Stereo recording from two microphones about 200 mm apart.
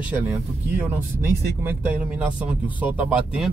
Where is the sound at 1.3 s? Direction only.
10° right (ahead or behind).